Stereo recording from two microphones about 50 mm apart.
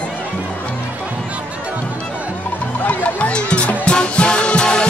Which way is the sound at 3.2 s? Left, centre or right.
Left.